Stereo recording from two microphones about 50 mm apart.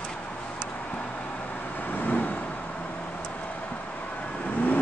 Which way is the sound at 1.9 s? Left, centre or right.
Left.